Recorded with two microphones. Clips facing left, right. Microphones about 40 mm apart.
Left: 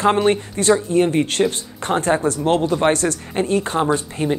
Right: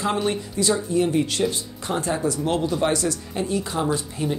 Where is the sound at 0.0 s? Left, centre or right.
Left.